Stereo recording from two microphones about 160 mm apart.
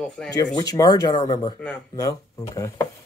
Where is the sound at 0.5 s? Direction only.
25° left (ahead or behind).